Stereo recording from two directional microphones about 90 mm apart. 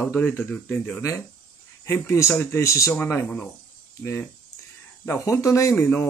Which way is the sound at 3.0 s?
20° left (ahead or behind).